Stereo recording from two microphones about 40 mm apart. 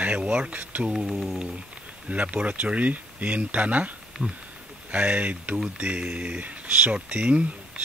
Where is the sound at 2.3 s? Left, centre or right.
Right.